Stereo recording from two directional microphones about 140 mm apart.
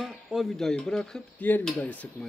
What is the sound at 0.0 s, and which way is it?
Speech, centre (ahead or behind).